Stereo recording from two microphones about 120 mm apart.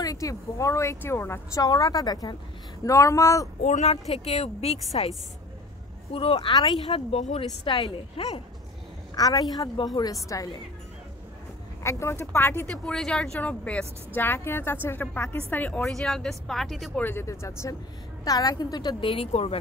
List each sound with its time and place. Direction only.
0.0 s speech: 30° left (ahead or behind)
1.6 s a woman's voice: 30° left (ahead or behind)
3.6 s speech: 70° left (ahead or behind)
4.1 s a woman's voice: 60° left (ahead or behind)
6.1 s speech: 50° left (ahead or behind)
6.5 s speech: 40° left (ahead or behind)
9.1 s a woman's voice: 30° left (ahead or behind)
11.8 s speech: 25° left (ahead or behind)
12.7 s a woman's voice: 5° left (ahead or behind)
15.9 s speech: 5° left (ahead or behind)
17.0 s a woman's voice: 20° left (ahead or behind); by 19.5 s 50° left (ahead or behind)